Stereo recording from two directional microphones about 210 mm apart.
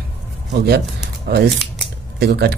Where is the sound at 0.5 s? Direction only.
50° right (ahead or behind).